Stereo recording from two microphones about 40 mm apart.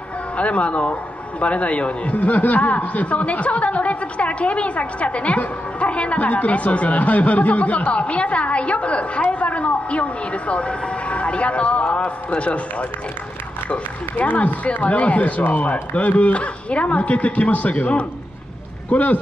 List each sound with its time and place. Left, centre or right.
0.4 s speech: left